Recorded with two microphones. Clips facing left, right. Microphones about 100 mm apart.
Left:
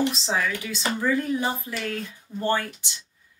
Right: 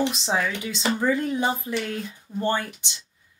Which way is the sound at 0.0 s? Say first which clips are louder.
Right 1 dB; 20° right (ahead or behind).